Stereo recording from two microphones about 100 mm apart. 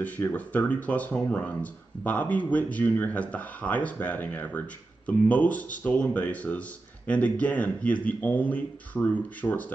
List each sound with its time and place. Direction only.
0.0 s speech: 15° left (ahead or behind)